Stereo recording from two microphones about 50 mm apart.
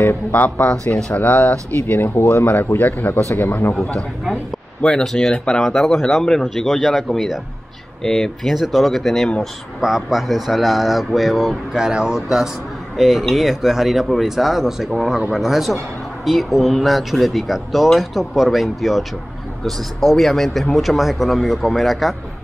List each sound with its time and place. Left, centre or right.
0.0 s speech: left
2.0 s speech: left
3.8 s speech: centre
5.6 s speech: centre
6.2 s speech: centre
6.5 s speech: centre
9.8 s speech: centre